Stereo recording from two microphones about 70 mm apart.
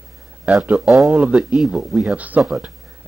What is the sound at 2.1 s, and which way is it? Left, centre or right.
Speech, right.